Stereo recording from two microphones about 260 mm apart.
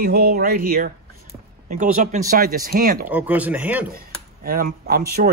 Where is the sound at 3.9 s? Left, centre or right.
Right.